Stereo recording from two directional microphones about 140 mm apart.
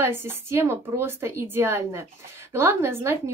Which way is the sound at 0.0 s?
15° right (ahead or behind).